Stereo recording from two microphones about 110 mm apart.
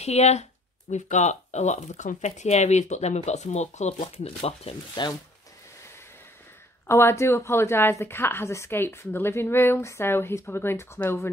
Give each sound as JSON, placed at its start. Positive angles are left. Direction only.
{"t": 0.0, "sound": "speech", "side_deg": 85}
{"t": 6.9, "sound": "a woman's voice", "side_deg": 25}